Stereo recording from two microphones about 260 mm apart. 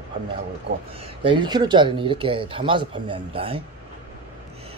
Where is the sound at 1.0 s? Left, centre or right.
Centre.